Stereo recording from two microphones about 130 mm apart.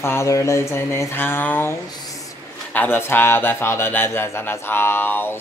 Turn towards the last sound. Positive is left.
turn(degrees=15)  # may be behind; listen again after turning